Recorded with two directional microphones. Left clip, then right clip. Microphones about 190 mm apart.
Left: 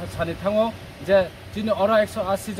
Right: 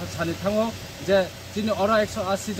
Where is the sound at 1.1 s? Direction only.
10° left (ahead or behind).